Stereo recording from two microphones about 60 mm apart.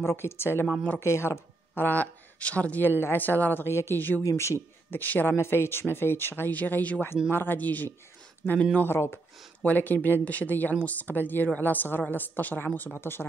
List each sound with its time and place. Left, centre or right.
0.0 s speech: left
1.0 s speech: left
1.8 s speech: left
3.6 s speech: left
4.2 s speech: left
4.9 s speech: left
6.5 s speech: left
8.8 s speech: left
9.6 s speech: left